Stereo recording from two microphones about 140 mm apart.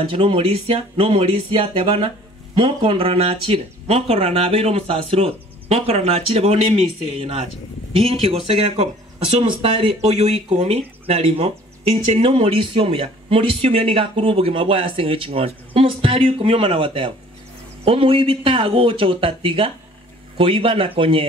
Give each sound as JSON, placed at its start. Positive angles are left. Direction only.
{"t": 0.1, "sound": "speech", "side_deg": -40}